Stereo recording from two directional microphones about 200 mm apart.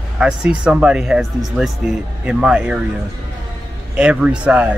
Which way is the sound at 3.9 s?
5° right (ahead or behind).